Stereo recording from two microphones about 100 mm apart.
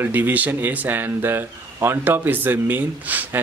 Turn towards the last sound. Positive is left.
turn(degrees=-15)  # may be behind; listen again after turning